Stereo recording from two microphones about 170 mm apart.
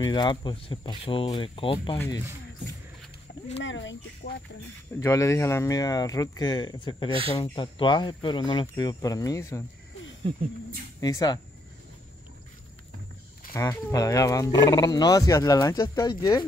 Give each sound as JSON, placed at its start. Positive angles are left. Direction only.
{"t": 0.0, "sound": "speech", "side_deg": 25}
{"t": 3.5, "sound": "speech", "side_deg": 90}
{"t": 5.0, "sound": "speech", "side_deg": 15}
{"t": 7.1, "sound": "speech", "side_deg": -30}
{"t": 7.5, "sound": "speech", "side_deg": 30}
{"t": 11.0, "sound": "speech", "side_deg": 20}
{"t": 13.5, "sound": "speech", "side_deg": 20}